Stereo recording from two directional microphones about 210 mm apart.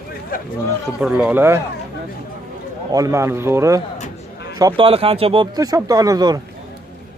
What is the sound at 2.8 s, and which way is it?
Speech, 15° right (ahead or behind).